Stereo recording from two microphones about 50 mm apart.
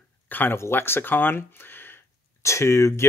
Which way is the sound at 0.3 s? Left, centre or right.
Left.